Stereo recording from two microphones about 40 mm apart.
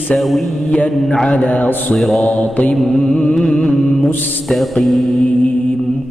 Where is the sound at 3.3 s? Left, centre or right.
Centre.